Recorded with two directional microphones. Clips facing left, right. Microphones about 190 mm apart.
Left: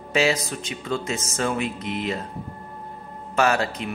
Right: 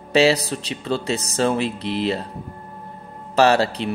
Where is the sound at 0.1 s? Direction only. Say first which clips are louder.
Right 5 dB; 35° right (ahead or behind).